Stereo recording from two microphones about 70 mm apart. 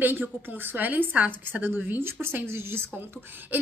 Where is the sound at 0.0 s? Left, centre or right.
Right.